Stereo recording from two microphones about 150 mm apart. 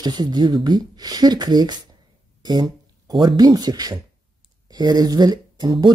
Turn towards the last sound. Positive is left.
turn(degrees=-30)  # may be behind; listen again after turning